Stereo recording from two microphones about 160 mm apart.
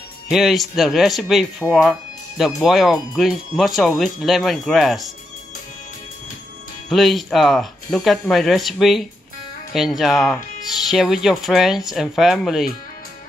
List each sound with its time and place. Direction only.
0.3 s speech: centre (ahead or behind)
6.9 s speech: centre (ahead or behind)